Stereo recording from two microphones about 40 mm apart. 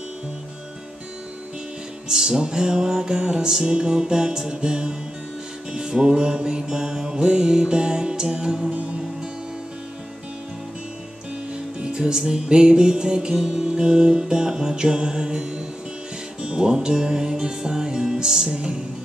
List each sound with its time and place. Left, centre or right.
2.0 s music: centre
8.7 s music: right
11.8 s music: centre